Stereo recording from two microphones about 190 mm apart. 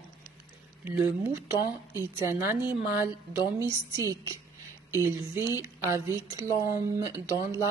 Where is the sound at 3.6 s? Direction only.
15° right (ahead or behind).